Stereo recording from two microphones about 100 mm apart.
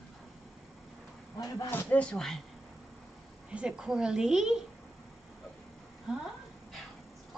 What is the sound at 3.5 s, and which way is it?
Speech, 10° right (ahead or behind).